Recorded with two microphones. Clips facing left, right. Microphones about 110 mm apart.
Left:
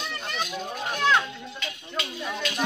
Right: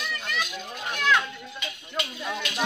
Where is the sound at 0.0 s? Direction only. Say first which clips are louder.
Even; 30° left (ahead or behind).